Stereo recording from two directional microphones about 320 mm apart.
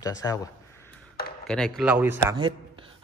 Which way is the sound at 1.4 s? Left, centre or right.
Centre.